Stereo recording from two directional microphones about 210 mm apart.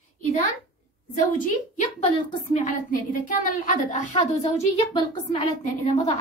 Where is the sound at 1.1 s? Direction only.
40° left (ahead or behind).